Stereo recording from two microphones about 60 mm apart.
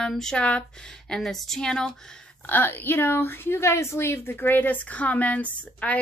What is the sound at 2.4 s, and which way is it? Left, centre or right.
A woman's voice, left.